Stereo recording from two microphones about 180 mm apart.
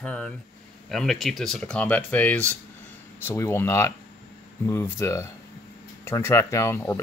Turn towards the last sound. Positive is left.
turn(degrees=15)  # may be behind; listen again after turning